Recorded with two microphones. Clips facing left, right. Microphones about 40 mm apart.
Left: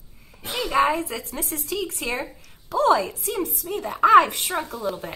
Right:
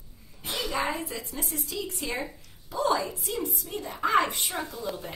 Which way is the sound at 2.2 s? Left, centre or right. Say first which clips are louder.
Left 3 dB; left.